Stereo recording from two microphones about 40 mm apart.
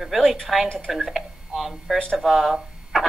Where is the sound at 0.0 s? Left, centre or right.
Centre.